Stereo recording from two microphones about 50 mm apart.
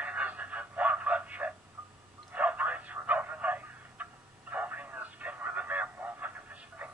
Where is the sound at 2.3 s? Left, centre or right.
Right.